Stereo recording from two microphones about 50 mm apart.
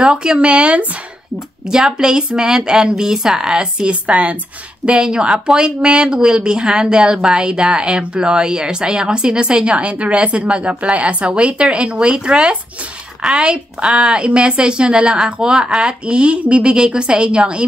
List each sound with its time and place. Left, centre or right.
0.0 s a woman's voice: centre
1.7 s speech: centre
3.9 s a woman's voice: right